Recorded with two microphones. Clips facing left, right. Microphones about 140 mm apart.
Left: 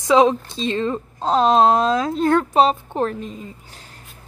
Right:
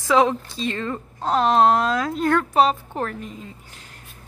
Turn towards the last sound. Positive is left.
turn(degrees=25)  # may be behind; listen again after turning